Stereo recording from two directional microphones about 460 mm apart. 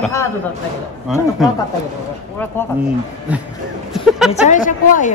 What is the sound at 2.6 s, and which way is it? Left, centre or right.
Speech, centre.